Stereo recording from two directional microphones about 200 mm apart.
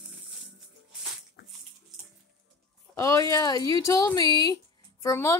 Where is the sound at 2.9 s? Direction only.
15° left (ahead or behind).